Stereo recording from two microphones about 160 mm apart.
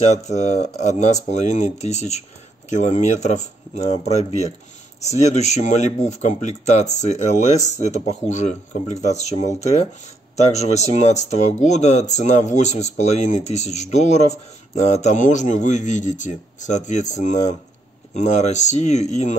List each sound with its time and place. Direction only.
0.1 s speech: 45° left (ahead or behind)